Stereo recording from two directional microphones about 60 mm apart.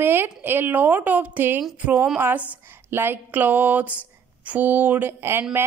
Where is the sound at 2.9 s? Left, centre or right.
Right.